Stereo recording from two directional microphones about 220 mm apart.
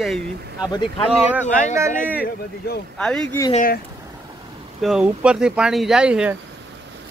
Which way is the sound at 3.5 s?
40° left (ahead or behind).